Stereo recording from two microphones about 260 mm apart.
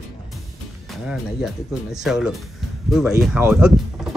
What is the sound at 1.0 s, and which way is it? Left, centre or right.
Speech, centre.